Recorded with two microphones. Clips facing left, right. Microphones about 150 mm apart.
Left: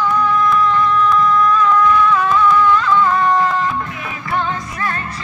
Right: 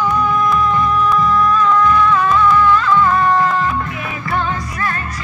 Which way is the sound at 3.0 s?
15° left (ahead or behind).